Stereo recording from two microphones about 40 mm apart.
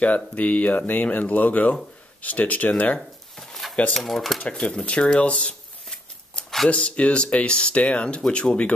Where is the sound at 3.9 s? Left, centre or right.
Centre.